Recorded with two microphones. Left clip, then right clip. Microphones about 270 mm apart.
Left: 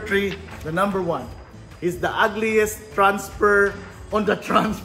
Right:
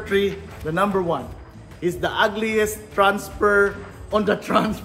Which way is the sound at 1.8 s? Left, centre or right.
Centre.